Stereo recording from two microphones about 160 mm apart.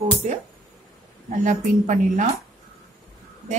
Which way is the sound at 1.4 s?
50° right (ahead or behind).